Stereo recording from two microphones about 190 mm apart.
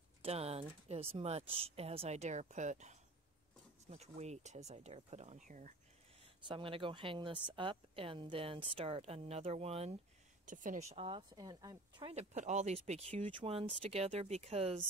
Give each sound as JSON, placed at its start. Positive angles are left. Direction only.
{"t": 0.2, "sound": "speech", "side_deg": -30}
{"t": 6.4, "sound": "speech", "side_deg": -25}
{"t": 10.4, "sound": "speech", "side_deg": -45}
{"t": 12.1, "sound": "speech", "side_deg": -35}